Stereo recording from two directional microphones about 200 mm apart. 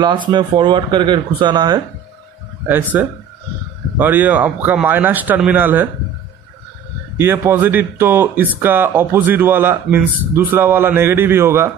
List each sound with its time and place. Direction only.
0.3 s speech: 25° right (ahead or behind)
2.7 s speech: 10° right (ahead or behind)
7.2 s speech: 10° right (ahead or behind)